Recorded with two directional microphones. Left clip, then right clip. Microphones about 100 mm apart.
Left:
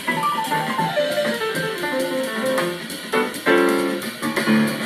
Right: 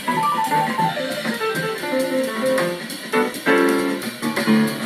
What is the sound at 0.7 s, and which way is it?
Music, 40° left (ahead or behind).